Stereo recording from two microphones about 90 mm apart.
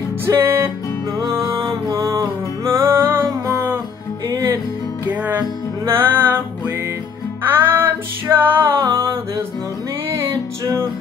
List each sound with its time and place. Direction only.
0.4 s music: 30° right (ahead or behind)
5.0 s music: 20° right (ahead or behind)
7.4 s music: 25° right (ahead or behind)